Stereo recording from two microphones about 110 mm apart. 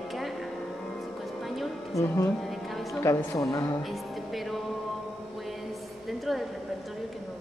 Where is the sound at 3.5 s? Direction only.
30° left (ahead or behind).